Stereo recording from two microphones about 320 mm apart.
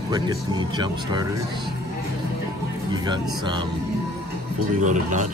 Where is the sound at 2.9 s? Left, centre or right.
Centre.